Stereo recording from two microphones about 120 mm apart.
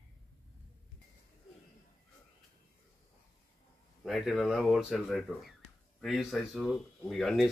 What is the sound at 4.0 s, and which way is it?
Speech, centre (ahead or behind).